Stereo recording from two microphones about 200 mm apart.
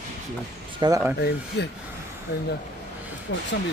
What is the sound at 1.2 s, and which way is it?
Speech, 55° left (ahead or behind).